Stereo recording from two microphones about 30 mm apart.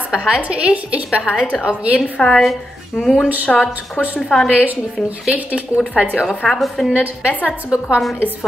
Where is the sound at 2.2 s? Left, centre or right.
Left.